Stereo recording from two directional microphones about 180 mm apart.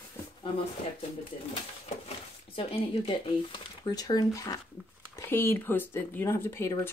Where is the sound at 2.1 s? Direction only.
30° left (ahead or behind).